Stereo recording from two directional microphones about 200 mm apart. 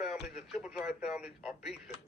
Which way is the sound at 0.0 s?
Centre (ahead or behind).